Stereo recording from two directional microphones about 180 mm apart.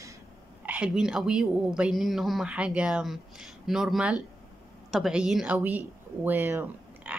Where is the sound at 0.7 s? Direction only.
5° right (ahead or behind).